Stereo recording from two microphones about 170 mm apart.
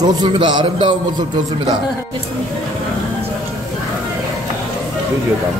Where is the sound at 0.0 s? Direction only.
25° right (ahead or behind).